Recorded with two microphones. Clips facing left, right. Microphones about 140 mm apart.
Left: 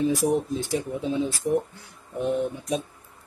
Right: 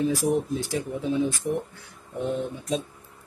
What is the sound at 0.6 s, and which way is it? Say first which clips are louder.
Speech: left 1 dB; 20° left (ahead or behind).